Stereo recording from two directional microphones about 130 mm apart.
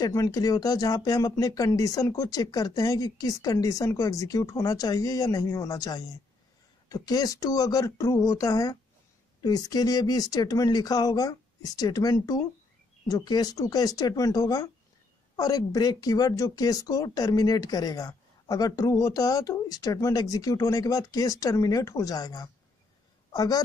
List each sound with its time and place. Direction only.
0.0 s a woman's voice: 25° left (ahead or behind)